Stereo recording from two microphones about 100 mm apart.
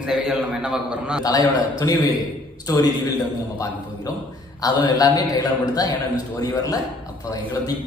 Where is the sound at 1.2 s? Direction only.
40° left (ahead or behind).